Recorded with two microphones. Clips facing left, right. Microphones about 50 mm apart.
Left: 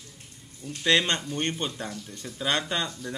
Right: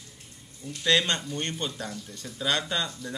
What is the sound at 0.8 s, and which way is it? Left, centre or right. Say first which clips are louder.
Speech: left 1 dB; centre.